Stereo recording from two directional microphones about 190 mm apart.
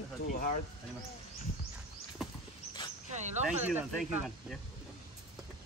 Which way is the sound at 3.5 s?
10° right (ahead or behind).